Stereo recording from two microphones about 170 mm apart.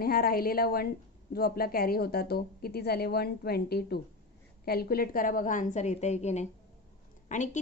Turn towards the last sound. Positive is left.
turn(degrees=45)  # may be behind; listen again after turning